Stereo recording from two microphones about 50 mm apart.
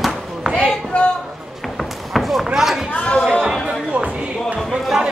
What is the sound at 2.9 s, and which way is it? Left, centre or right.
Speech, left.